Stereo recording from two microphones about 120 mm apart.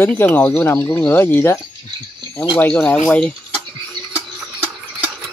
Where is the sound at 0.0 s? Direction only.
15° left (ahead or behind).